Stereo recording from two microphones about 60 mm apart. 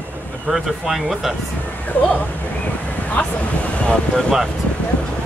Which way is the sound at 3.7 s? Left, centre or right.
Centre.